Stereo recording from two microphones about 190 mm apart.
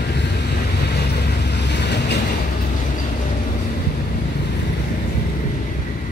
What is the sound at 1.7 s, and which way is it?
Vehicle, 65° left (ahead or behind).